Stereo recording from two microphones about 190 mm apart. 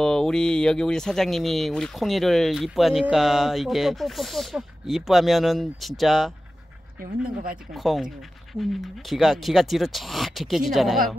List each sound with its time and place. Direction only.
0.0 s speech: 5° left (ahead or behind)
7.7 s speech: centre (ahead or behind)